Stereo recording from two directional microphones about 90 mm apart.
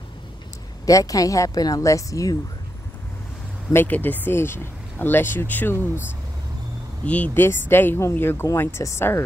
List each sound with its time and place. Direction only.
0.8 s speech: 40° left (ahead or behind)
3.7 s speech: 20° left (ahead or behind)
7.1 s speech: 15° left (ahead or behind)